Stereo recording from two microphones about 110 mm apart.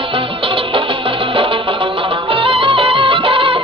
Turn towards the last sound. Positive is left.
turn(degrees=-55)  # may be behind; listen again after turning